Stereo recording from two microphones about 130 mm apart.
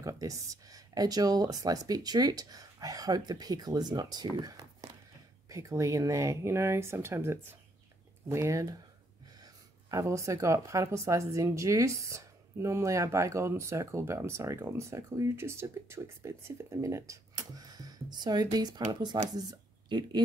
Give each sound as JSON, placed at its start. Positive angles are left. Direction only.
{"t": 0.0, "sound": "speech", "side_deg": -25}